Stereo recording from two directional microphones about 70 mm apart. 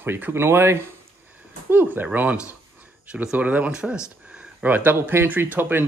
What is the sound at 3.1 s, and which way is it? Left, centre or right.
Speech, centre.